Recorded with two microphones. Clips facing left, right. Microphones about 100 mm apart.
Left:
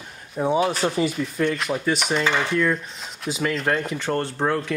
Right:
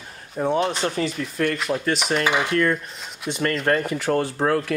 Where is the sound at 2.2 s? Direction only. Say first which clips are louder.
Right 1 dB; 15° right (ahead or behind).